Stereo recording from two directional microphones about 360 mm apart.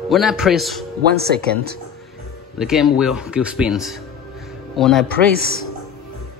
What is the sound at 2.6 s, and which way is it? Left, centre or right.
Speech, centre.